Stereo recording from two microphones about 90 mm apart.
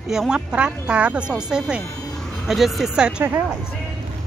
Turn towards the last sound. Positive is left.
turn(degrees=-10)  # may be behind; listen again after turning